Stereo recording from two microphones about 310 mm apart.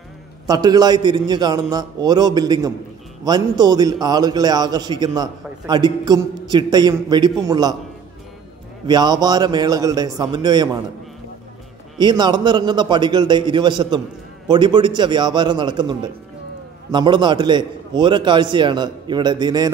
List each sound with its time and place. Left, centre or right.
0.5 s a man's voice: centre
8.8 s a man's voice: centre
12.0 s a man's voice: centre